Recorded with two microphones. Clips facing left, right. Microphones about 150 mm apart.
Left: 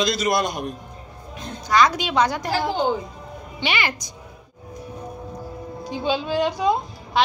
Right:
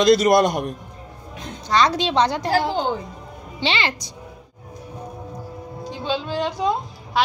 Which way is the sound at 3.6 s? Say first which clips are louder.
Right 2 dB; 25° right (ahead or behind).